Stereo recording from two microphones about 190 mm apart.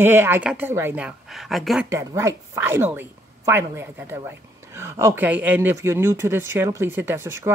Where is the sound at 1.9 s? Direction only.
15° right (ahead or behind).